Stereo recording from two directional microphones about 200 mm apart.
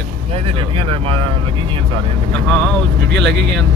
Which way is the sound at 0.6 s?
25° right (ahead or behind).